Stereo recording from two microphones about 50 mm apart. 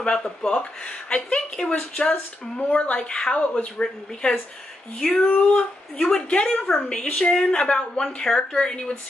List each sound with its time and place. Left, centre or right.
0.0 s a woman's voice: centre
5.0 s a woman's voice: left